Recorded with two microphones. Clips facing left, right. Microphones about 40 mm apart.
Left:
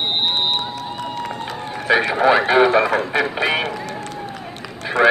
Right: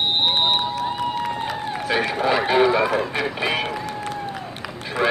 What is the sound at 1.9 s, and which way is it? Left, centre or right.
Speech, centre.